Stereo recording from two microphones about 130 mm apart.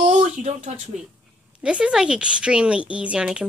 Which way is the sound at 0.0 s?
60° right (ahead or behind).